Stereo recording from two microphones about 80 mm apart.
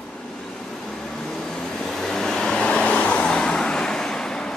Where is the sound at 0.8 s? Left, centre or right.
Centre.